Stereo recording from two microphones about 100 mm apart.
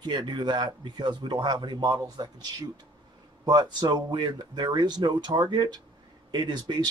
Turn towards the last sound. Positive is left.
turn(degrees=-45)  # may be behind; listen again after turning